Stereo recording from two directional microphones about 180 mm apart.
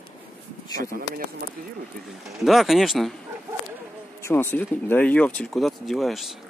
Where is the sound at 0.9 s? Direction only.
55° right (ahead or behind).